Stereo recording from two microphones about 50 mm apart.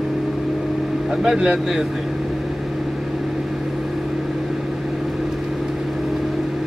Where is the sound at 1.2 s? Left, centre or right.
Centre.